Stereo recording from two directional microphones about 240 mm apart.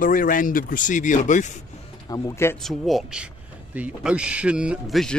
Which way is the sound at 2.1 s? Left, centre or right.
Centre.